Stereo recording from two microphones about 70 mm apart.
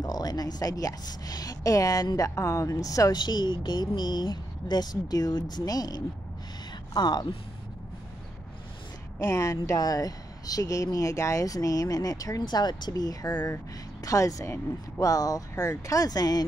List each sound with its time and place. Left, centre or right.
0.0 s speech: left
6.9 s speech: left
9.2 s speech: left